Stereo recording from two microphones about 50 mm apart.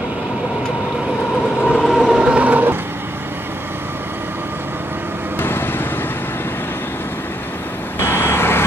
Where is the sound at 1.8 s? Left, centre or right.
Centre.